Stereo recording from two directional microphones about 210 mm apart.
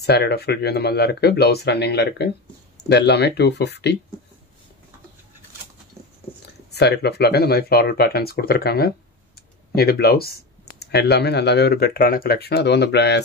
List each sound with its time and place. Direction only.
0.0 s speech: 50° left (ahead or behind)
6.7 s speech: 50° left (ahead or behind)